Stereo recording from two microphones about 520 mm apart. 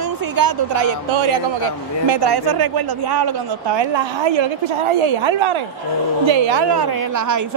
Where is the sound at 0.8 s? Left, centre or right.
Right.